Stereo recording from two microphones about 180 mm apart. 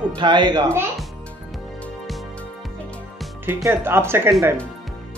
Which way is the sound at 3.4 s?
15° right (ahead or behind).